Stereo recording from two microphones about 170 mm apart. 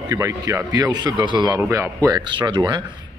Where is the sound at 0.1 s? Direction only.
20° right (ahead or behind).